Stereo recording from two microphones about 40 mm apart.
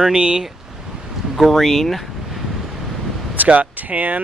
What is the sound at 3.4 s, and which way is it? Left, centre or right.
Speech, right.